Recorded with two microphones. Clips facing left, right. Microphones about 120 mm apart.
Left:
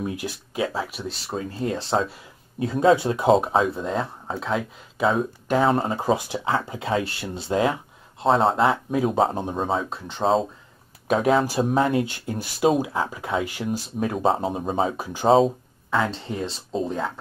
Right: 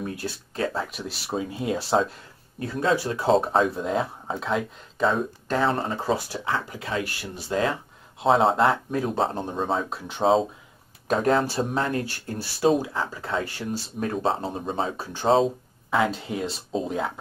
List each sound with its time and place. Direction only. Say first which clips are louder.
0.0 s speech: left 2 dB; 15° left (ahead or behind)
1.2 s speech: even; 10° right (ahead or behind)
2.6 s speech: left 6 dB; 20° left (ahead or behind)
3.3 s speech: left 2 dB; centre (ahead or behind); by 7.7 s 20° left (ahead or behind)
8.2 s speech: even; centre (ahead or behind); by 13.8 s 15° left (ahead or behind)
13.9 s speech: left 3 dB; 5° left (ahead or behind)
15.9 s speech: right 1 dB; 5° right (ahead or behind)